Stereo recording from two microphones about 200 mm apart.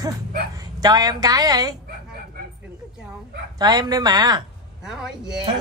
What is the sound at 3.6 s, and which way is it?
Speech, 20° right (ahead or behind).